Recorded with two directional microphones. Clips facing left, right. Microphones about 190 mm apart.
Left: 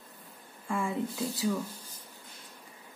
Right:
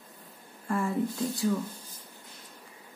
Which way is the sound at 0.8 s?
5° left (ahead or behind).